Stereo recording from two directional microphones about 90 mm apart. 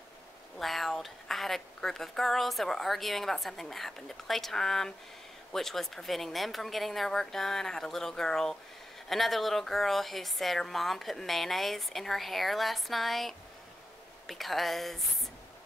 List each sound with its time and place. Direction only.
0.6 s a woman's voice: centre (ahead or behind)